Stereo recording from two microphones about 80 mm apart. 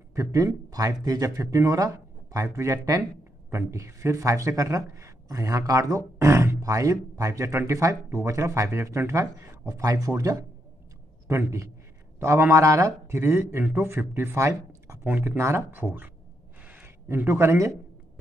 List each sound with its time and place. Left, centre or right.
0.1 s a sound: right
0.7 s speech: right
3.0 s speech: right
11.2 s speech: right
16.6 s a sound: centre
17.1 s speech: right